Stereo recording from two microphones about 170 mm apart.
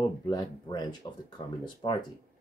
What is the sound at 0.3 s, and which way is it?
Speech, 25° left (ahead or behind).